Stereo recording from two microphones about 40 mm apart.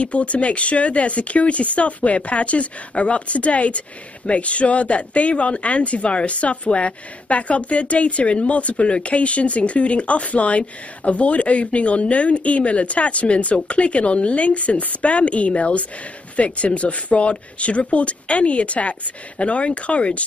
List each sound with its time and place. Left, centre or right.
0.0 s speech: left